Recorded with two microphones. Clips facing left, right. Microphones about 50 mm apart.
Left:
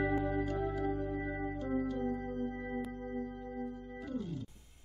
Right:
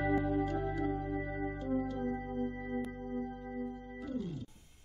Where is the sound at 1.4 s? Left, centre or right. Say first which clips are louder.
Right 1 dB; centre.